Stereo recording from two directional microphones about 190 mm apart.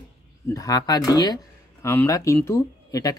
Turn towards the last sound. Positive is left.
turn(degrees=20)  # may be behind; listen again after turning